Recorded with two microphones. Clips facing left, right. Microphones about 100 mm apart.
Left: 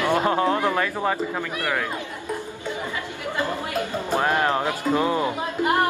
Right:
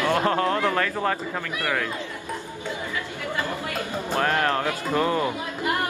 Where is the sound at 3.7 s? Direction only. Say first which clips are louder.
Left 2 dB; 15° left (ahead or behind).